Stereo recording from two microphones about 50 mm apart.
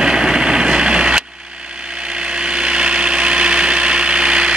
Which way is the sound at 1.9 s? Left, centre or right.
Centre.